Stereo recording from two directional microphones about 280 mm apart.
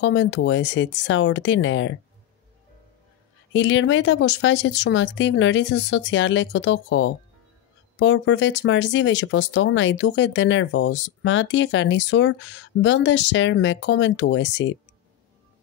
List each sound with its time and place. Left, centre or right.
0.0 s speech: left
3.5 s speech: left